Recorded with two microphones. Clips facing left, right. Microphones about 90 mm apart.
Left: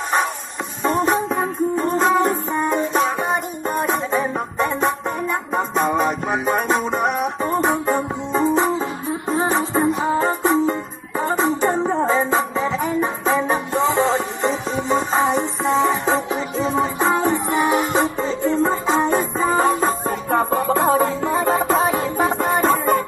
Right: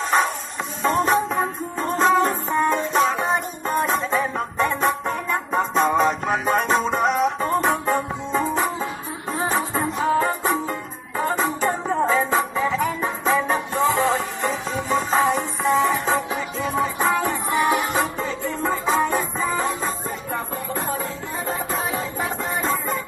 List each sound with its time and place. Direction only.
0.8 s music: 20° left (ahead or behind); by 19.6 s 35° left (ahead or behind)
19.8 s music: 60° left (ahead or behind)